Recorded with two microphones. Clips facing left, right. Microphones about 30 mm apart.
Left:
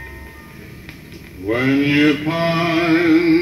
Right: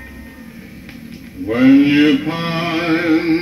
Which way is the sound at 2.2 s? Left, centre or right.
Centre.